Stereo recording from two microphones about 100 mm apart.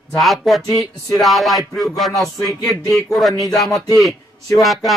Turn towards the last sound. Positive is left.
turn(degrees=0)  # may be behind; listen again after turning